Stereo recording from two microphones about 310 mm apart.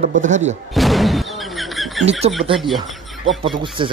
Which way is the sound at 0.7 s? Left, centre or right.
Centre.